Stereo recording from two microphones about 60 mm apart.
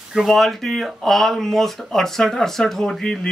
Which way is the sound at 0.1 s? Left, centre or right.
Centre.